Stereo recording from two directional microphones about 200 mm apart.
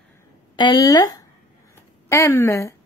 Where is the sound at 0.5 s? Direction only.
20° left (ahead or behind).